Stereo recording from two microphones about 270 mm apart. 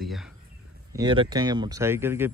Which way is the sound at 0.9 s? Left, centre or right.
Centre.